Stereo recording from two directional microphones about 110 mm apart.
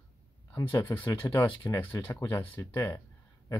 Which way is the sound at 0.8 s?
25° left (ahead or behind).